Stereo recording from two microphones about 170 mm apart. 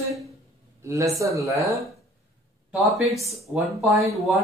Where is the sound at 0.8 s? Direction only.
20° right (ahead or behind).